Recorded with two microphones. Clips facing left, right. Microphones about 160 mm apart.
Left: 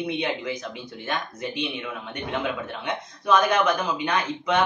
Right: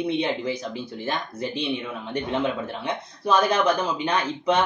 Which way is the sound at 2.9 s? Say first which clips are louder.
Left 1 dB; 30° right (ahead or behind).